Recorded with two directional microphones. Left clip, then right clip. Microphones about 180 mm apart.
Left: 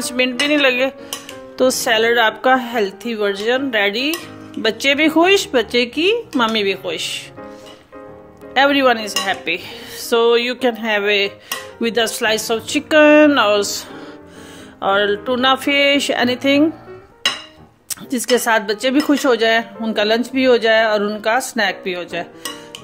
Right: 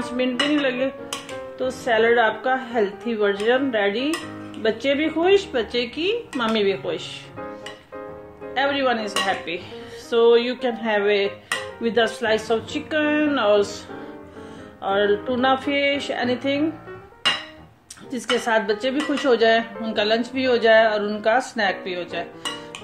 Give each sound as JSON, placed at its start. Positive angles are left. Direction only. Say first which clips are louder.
{"t": 0.2, "sound": "a woman's voice", "louder": "left 7 dB", "side_deg": 65}
{"t": 8.5, "sound": "a woman's voice", "louder": "left 8 dB", "side_deg": 55}
{"t": 18.1, "sound": "speech", "louder": "left 5 dB", "side_deg": 55}